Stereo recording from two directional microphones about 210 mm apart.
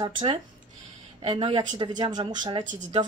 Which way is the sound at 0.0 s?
25° right (ahead or behind).